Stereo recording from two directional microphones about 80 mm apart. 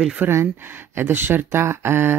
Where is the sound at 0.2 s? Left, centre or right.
Right.